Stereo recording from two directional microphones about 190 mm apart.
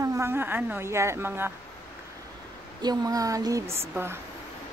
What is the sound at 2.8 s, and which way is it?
Speech, 20° right (ahead or behind).